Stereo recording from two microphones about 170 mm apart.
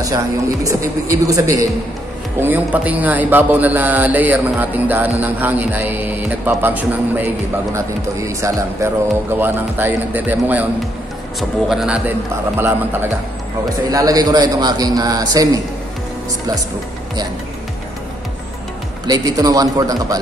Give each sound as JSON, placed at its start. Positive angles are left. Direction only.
{"t": 0.7, "sound": "a man's voice", "side_deg": -20}
{"t": 11.7, "sound": "a man's voice", "side_deg": -5}
{"t": 19.0, "sound": "a man's voice", "side_deg": -20}